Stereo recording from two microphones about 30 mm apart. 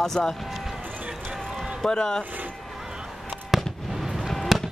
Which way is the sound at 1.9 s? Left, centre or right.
Left.